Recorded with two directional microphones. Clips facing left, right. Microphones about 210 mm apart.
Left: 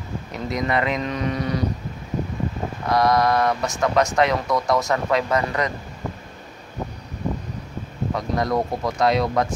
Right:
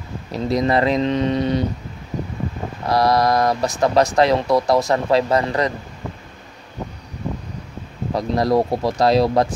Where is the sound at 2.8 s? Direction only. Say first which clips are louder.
Right 2 dB; 35° right (ahead or behind).